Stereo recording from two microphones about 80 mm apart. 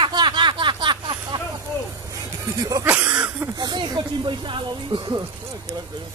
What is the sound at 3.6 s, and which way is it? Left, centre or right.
Speech, right.